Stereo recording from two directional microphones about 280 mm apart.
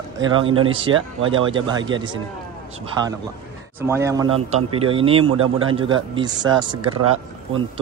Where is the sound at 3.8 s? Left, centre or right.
Centre.